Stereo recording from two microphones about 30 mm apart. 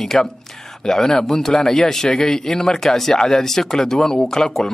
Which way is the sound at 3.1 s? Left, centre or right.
Left.